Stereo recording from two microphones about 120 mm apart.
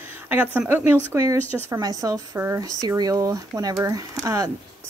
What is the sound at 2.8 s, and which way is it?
Speech, 30° right (ahead or behind).